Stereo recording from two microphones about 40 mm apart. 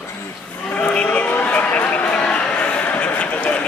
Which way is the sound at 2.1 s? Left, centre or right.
Left.